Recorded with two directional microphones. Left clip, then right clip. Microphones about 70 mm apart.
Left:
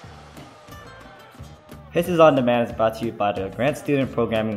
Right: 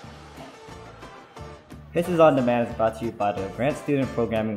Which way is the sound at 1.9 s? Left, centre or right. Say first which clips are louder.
Left 3 dB; left.